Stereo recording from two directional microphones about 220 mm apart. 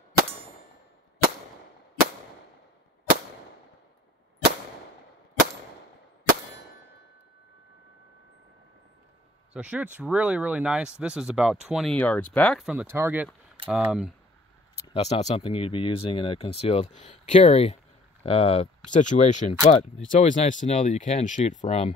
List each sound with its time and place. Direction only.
9.5 s speech: 5° right (ahead or behind)
14.9 s speech: 30° left (ahead or behind)